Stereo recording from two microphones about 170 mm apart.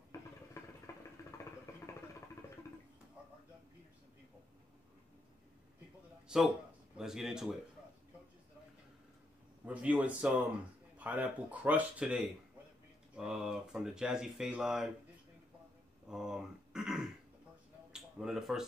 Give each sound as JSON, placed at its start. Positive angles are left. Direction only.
{"t": 0.6, "sound": "vehicle", "side_deg": 15}
{"t": 6.2, "sound": "speech", "side_deg": -5}
{"t": 9.7, "sound": "speech", "side_deg": -10}
{"t": 16.1, "sound": "throat clearing", "side_deg": -5}
{"t": 17.9, "sound": "speech", "side_deg": 0}